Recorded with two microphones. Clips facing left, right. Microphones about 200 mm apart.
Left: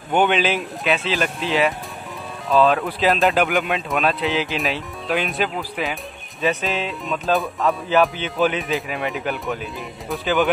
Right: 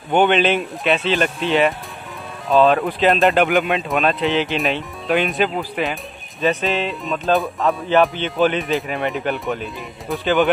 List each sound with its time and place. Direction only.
0.1 s speech: 5° left (ahead or behind)